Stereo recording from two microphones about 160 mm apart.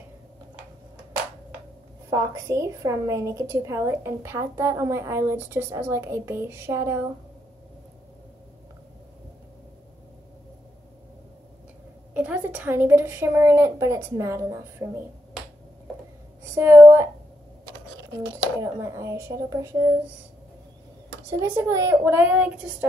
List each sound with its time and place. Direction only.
2.0 s a woman's voice: 20° right (ahead or behind)
12.1 s a woman's voice: 10° right (ahead or behind)
16.5 s a woman's voice: 15° right (ahead or behind)
18.6 s a woman's voice: 20° right (ahead or behind)
21.3 s a woman's voice: 20° right (ahead or behind)